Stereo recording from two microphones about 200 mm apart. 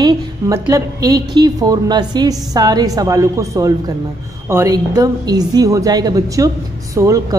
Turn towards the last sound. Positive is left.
turn(degrees=-15)  # may be behind; listen again after turning